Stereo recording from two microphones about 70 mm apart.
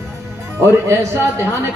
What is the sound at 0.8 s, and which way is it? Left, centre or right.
Speech, right.